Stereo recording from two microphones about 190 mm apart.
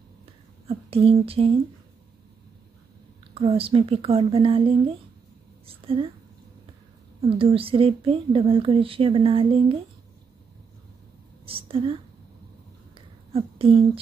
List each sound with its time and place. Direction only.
0.7 s speech: 30° right (ahead or behind)
3.3 s speech: 30° right (ahead or behind)
7.2 s speech: 30° right (ahead or behind)
11.4 s speech: 30° right (ahead or behind)
12.9 s a sound: 30° right (ahead or behind)